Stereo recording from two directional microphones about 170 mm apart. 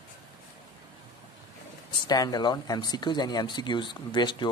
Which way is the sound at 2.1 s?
25° left (ahead or behind).